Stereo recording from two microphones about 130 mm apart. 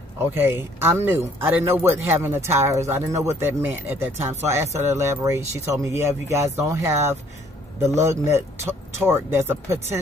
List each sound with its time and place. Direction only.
0.2 s speech: 20° right (ahead or behind)